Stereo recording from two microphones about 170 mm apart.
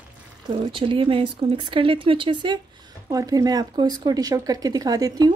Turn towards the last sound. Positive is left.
turn(degrees=-20)  # may be behind; listen again after turning